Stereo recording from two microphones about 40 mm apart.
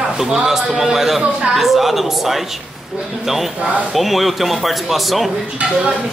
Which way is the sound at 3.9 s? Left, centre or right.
Centre.